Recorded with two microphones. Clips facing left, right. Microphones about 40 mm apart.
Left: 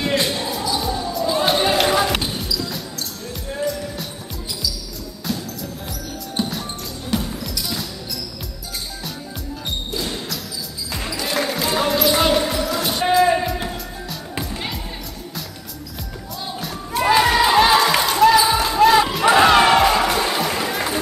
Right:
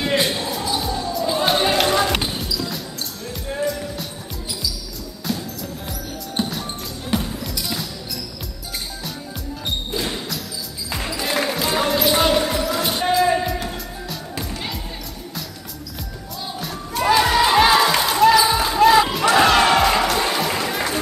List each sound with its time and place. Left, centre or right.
0.0 s basketball bounce: centre
3.0 s music: centre
3.6 s music: centre
5.9 s music: centre
10.9 s basketball bounce: centre
13.0 s music: centre
16.5 s music: centre
17.1 s basketball bounce: centre
19.2 s music: centre
20.2 s music: centre